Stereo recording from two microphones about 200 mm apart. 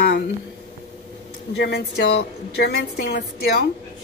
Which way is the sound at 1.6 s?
55° left (ahead or behind).